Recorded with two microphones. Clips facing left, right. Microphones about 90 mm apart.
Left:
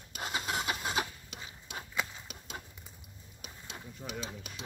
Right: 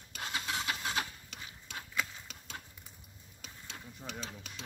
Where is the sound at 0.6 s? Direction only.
20° left (ahead or behind).